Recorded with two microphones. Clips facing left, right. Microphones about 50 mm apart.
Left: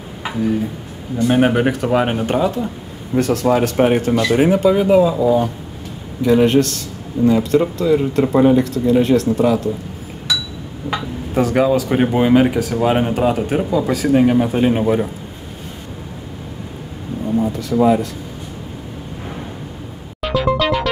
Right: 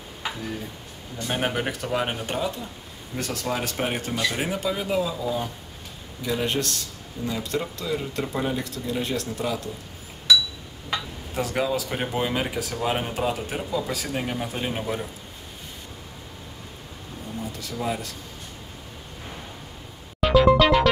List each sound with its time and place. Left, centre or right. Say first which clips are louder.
1.2 s speech: left 12 dB; centre
4.0 s speech: left 11 dB; centre
4.4 s speech: left 14 dB; left
6.2 s speech: left 13 dB; centre
10.9 s speech: left 7 dB; centre
17.5 s a sound: left 13 dB; centre
20.2 s music: right 1 dB; centre